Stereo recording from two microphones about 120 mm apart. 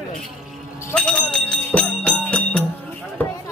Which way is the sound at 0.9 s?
10° left (ahead or behind).